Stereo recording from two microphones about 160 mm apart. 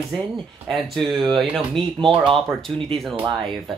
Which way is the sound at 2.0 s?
30° right (ahead or behind).